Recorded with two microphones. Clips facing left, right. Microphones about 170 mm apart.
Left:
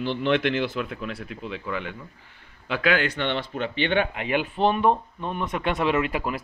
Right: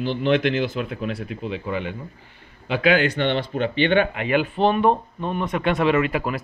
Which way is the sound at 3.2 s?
60° right (ahead or behind).